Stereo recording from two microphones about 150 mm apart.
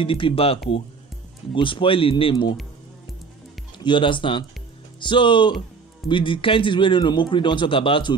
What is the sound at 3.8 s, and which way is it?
A man's voice, 35° left (ahead or behind).